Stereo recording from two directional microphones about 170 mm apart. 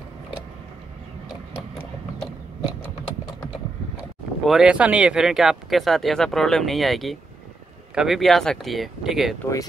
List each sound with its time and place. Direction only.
4.5 s speech: 5° right (ahead or behind)
9.4 s speech: 20° left (ahead or behind)